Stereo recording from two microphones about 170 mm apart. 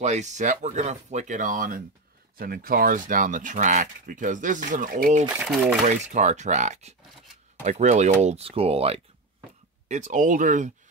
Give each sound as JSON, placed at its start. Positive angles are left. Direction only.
{"t": 0.0, "sound": "speech", "side_deg": -45}
{"t": 5.4, "sound": "speech", "side_deg": -5}
{"t": 5.9, "sound": "speech", "side_deg": -45}